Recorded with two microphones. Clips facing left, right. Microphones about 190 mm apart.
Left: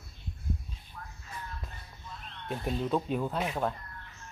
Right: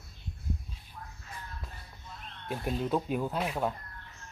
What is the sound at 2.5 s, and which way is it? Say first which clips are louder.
Speech: even; 5° right (ahead or behind).